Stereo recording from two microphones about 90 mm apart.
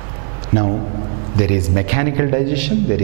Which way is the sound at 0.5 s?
20° right (ahead or behind).